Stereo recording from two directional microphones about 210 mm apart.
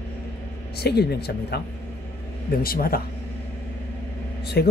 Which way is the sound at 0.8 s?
50° left (ahead or behind).